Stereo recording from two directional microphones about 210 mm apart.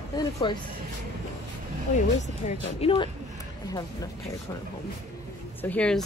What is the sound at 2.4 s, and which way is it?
Speech, 25° left (ahead or behind).